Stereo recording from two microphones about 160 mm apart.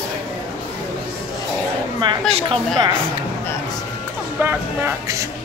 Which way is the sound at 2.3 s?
40° right (ahead or behind).